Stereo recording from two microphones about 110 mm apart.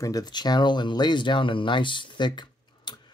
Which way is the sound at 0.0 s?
35° left (ahead or behind).